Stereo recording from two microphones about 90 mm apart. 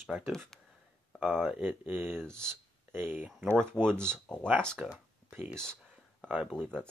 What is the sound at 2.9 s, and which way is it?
Speech, 20° right (ahead or behind).